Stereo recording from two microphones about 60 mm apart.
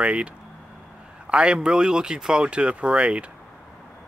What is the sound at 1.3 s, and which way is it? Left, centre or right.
Speech, centre.